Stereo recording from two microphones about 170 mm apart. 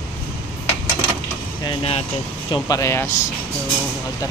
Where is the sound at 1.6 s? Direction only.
35° left (ahead or behind).